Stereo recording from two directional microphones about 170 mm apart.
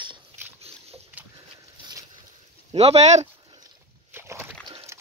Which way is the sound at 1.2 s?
10° right (ahead or behind).